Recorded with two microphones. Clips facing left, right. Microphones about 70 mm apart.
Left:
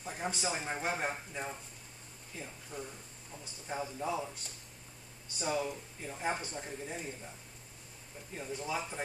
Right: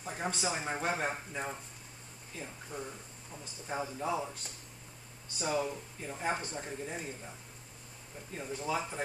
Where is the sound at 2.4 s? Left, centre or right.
Centre.